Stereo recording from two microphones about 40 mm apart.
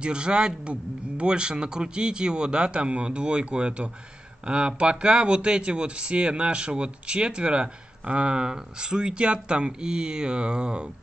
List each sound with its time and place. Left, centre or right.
0.0 s speech: right